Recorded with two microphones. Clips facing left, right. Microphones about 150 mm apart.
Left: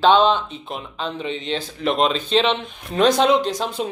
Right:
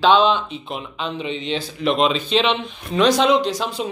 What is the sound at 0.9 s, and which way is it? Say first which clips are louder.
Speech: even; 40° left (ahead or behind).